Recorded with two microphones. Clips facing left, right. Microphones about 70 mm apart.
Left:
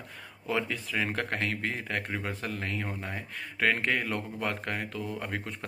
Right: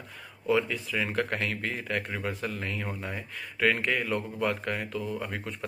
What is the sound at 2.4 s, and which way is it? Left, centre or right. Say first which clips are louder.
Speech: right 1 dB; left.